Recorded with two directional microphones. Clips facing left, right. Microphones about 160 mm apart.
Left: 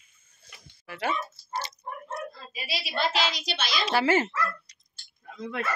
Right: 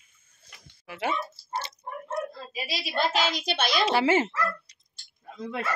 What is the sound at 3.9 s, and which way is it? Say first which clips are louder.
Speech: left 2 dB; 25° right (ahead or behind).